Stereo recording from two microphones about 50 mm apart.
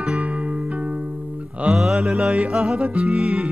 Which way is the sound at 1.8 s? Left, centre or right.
Centre.